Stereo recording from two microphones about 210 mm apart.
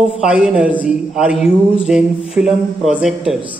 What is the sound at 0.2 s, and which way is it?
A man's voice, centre (ahead or behind).